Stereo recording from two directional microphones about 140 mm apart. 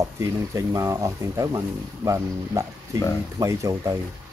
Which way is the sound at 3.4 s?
20° right (ahead or behind).